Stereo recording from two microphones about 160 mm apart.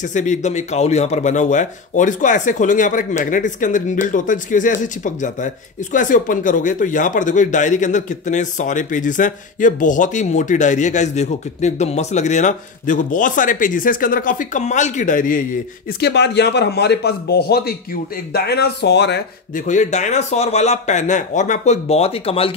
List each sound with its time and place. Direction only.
0.0 s speech: 50° left (ahead or behind)
16.0 s a man's voice: 90° left
18.3 s a man's voice: 90° left
19.5 s speech: 50° left (ahead or behind)